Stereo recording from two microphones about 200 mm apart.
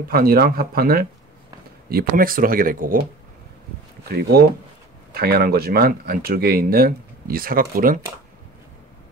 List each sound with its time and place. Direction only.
0.1 s speech: 50° right (ahead or behind)
5.1 s speech: 50° right (ahead or behind)